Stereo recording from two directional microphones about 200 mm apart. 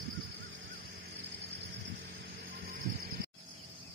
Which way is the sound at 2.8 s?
50° right (ahead or behind).